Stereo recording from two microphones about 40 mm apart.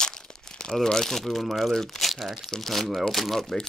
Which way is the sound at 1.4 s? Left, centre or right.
Centre.